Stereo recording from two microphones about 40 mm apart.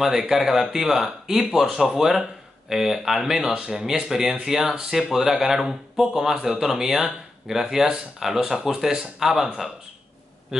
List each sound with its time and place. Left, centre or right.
0.3 s speech: centre
10.5 s speech: centre